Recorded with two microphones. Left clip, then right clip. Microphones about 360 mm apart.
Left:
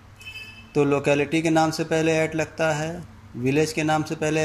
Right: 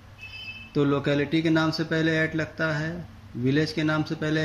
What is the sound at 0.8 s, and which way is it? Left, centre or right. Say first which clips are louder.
A man's voice: left 4 dB; centre.